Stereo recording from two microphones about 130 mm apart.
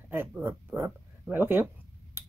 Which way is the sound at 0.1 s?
15° right (ahead or behind).